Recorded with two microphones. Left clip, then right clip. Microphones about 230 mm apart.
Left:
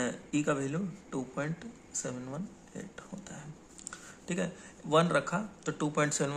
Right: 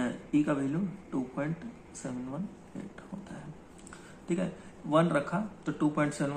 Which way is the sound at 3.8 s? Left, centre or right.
Left.